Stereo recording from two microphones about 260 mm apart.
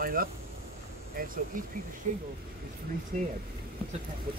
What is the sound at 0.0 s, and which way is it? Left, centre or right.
Speech, right.